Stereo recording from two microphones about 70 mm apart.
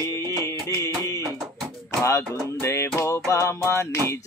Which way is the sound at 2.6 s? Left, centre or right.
Left.